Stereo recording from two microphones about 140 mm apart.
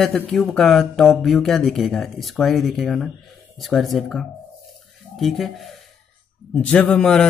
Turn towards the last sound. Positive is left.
turn(degrees=5)  # may be behind; listen again after turning